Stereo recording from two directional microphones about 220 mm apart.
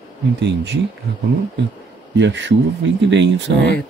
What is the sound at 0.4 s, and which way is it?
Speech, 55° right (ahead or behind).